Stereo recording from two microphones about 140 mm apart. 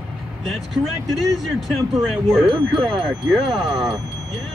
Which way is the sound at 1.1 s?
Centre (ahead or behind).